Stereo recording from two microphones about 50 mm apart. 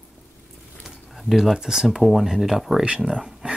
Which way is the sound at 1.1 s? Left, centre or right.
Centre.